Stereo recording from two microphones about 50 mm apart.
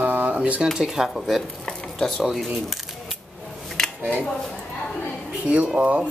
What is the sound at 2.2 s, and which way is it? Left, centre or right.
Speech, centre.